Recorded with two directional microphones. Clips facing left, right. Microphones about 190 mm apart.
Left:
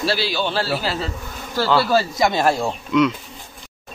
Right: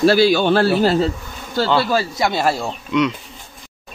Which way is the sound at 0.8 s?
40° right (ahead or behind).